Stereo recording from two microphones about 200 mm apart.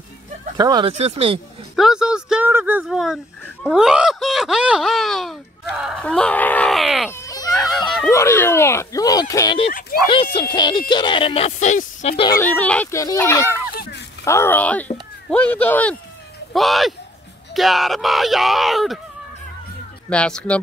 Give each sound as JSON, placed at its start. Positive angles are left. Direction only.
{"t": 0.6, "sound": "speech", "side_deg": -20}
{"t": 1.8, "sound": "a sound", "side_deg": -5}
{"t": 3.6, "sound": "speech", "side_deg": 0}
{"t": 7.1, "sound": "baby cry", "side_deg": 15}
{"t": 8.1, "sound": "speech", "side_deg": 15}
{"t": 12.3, "sound": "speech", "side_deg": 10}
{"t": 20.1, "sound": "speech", "side_deg": 5}